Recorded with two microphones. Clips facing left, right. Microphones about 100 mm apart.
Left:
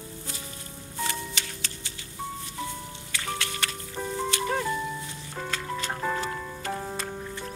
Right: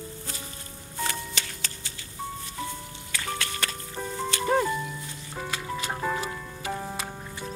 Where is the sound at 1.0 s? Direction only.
40° right (ahead or behind).